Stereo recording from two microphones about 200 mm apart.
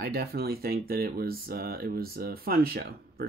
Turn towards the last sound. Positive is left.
turn(degrees=-50)  # may be behind; listen again after turning